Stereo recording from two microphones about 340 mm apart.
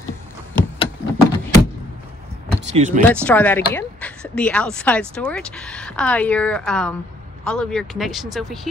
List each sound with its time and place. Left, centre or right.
0.6 s a sound: centre
2.7 s speech: centre
3.3 s a woman's voice: centre